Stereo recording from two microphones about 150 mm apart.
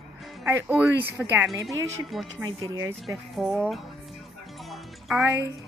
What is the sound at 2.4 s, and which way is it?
Speech, 25° right (ahead or behind).